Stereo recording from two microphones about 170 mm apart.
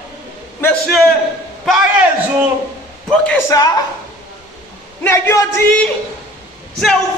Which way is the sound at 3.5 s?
20° left (ahead or behind).